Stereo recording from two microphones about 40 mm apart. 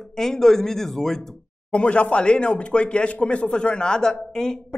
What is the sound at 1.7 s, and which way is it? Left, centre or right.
Speech, left.